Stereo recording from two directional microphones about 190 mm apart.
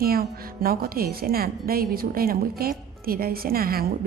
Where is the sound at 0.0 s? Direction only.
50° right (ahead or behind).